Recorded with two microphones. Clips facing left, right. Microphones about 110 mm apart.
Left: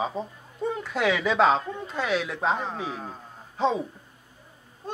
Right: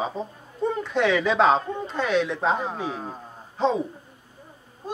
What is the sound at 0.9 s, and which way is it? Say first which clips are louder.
A woman's voice: right 2 dB; 5° left (ahead or behind).